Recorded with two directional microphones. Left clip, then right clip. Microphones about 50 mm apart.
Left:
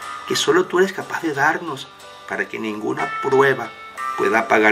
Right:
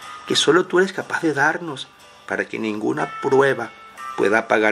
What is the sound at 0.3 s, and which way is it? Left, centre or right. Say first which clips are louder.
Speech: right 1 dB; right.